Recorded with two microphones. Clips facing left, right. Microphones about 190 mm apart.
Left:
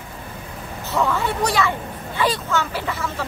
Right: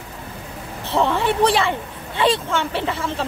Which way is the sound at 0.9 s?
30° right (ahead or behind).